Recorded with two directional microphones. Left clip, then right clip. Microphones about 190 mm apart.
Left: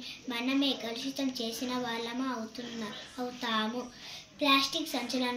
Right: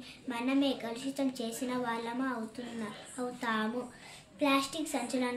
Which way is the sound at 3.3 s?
5° right (ahead or behind).